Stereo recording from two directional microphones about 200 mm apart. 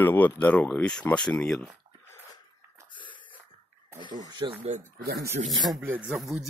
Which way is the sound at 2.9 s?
25° left (ahead or behind).